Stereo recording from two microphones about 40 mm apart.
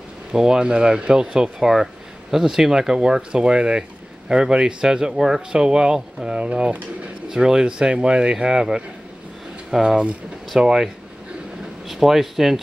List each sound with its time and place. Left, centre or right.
0.3 s speech: centre
7.2 s speech: centre
11.9 s speech: centre